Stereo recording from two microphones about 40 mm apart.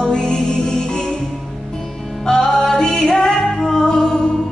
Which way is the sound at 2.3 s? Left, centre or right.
Centre.